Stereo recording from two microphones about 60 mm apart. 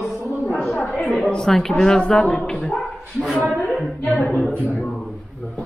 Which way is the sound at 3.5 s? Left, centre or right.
Centre.